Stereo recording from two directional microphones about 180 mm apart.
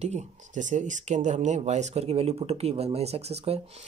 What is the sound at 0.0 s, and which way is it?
Speech, 40° right (ahead or behind).